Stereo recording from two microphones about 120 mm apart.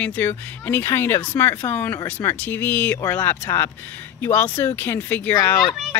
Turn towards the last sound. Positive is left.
turn(degrees=30)  # may be behind; listen again after turning